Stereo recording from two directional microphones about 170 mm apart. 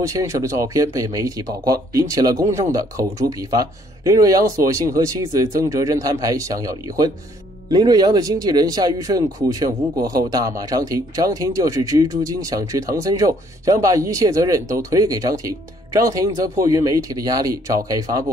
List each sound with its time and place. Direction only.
0.0 s speech: 20° right (ahead or behind)